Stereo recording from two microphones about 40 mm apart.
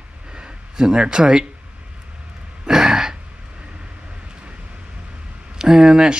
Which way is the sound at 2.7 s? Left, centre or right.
Centre.